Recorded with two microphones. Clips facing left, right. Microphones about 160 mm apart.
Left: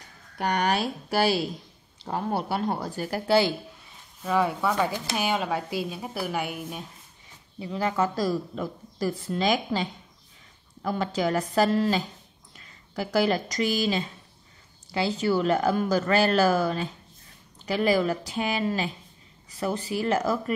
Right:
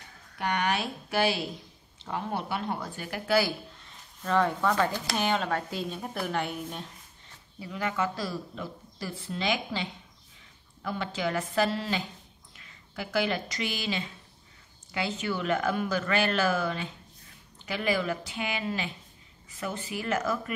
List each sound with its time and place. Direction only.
0.4 s speech: 40° left (ahead or behind)
3.8 s a woman's voice: 10° left (ahead or behind)
7.5 s speech: 30° left (ahead or behind)